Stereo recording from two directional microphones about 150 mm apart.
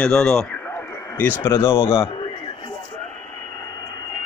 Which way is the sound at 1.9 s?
35° left (ahead or behind).